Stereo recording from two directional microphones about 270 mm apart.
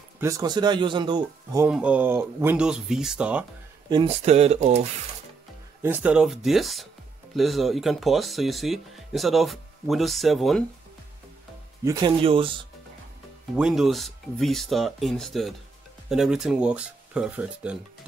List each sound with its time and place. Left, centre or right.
0.2 s speech: centre
3.9 s speech: right
5.8 s speech: centre
11.8 s speech: centre
13.6 s speech: centre